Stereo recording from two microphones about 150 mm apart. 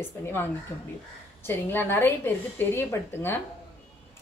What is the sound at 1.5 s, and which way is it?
A woman's voice, 15° left (ahead or behind).